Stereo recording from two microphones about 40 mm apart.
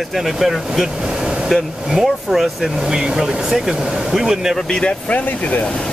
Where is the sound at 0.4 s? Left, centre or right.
Centre.